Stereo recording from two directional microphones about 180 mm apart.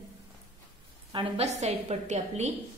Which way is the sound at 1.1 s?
30° right (ahead or behind).